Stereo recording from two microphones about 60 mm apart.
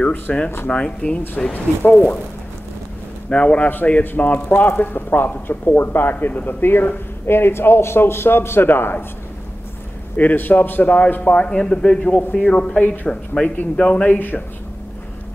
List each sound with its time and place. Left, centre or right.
0.0 s a man's voice: left
1.5 s a man's voice: left
3.3 s a man's voice: centre; by 9.0 s left
10.1 s a man's voice: left
11.3 s a man's voice: centre
12.8 s a man's voice: left
13.1 s speech: centre
14.1 s speech: left